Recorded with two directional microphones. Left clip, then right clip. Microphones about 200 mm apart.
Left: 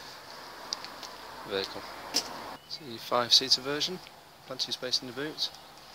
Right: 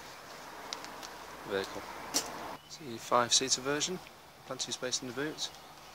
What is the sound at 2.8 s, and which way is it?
Speech, 5° right (ahead or behind).